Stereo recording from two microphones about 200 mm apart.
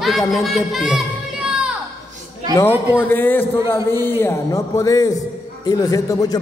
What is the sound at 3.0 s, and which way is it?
A man's voice, 10° left (ahead or behind).